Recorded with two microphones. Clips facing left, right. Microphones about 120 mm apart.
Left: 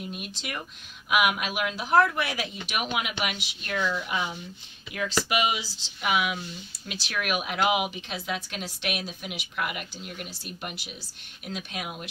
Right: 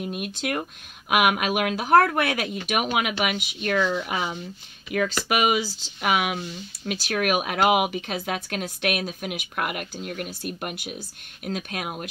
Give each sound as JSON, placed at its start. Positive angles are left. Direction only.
{"t": 0.1, "sound": "speech", "side_deg": -55}